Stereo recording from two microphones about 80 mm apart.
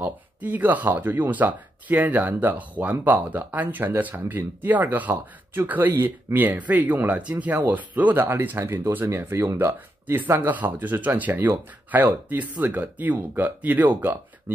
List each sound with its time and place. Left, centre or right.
0.0 s speech: right